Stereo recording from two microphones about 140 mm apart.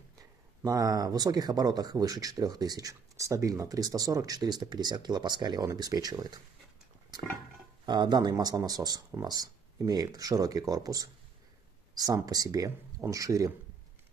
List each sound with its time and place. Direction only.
0.6 s speech: 25° right (ahead or behind)
7.8 s speech: 30° right (ahead or behind)